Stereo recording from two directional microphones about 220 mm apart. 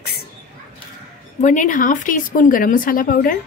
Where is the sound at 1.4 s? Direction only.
35° left (ahead or behind).